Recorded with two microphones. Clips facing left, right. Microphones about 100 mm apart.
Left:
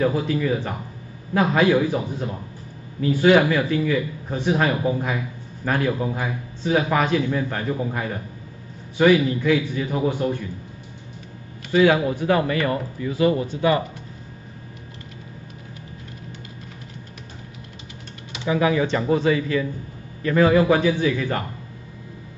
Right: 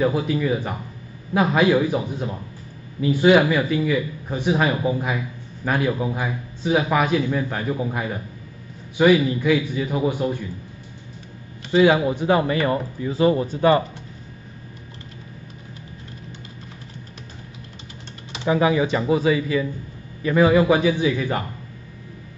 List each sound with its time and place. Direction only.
0.0 s a man's voice: 15° right (ahead or behind)
11.7 s speech: 20° right (ahead or behind); by 13.8 s 35° right (ahead or behind)
18.3 s typing: 35° right (ahead or behind)
18.7 s a man's voice: 10° right (ahead or behind)